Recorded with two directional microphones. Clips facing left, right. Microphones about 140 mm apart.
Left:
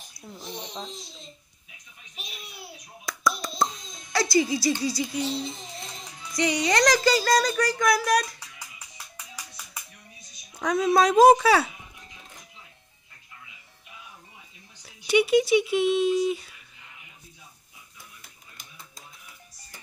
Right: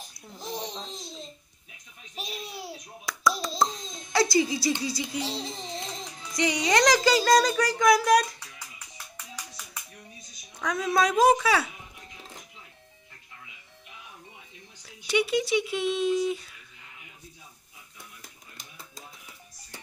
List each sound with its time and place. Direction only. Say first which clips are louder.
0.4 s babbling: right 4 dB; 35° right (ahead or behind)
2.1 s babbling: right 7 dB; 35° right (ahead or behind)
3.3 s hands: right 1 dB; centre (ahead or behind)
3.6 s a sound: even; 30° right (ahead or behind)
4.1 s music: right 1 dB; 25° right (ahead or behind)
4.6 s speech: left 3 dB; 20° right (ahead or behind)
5.2 s a child's voice: left 3 dB; 35° right (ahead or behind)
6.3 s speech: even; 20° right (ahead or behind)
8.5 s music: even; 10° left (ahead or behind)
10.6 s speech: left 4 dB; 25° left (ahead or behind)
15.0 s speech: left 5 dB; 10° left (ahead or behind)